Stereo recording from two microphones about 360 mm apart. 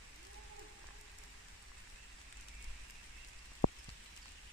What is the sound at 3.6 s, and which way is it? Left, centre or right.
Raindrop, left.